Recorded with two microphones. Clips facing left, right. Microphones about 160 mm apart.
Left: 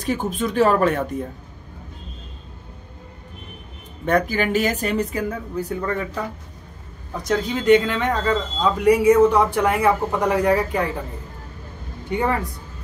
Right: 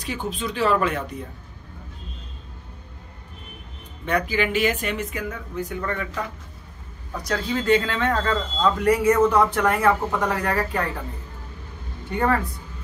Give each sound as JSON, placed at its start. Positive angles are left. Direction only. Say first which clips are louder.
{"t": 0.0, "sound": "speech", "louder": "left 5 dB", "side_deg": 50}
{"t": 4.0, "sound": "a woman's voice", "louder": "left 3 dB", "side_deg": 45}
{"t": 7.2, "sound": "speech", "louder": "left 5 dB", "side_deg": 20}
{"t": 12.1, "sound": "speech", "louder": "even", "side_deg": 15}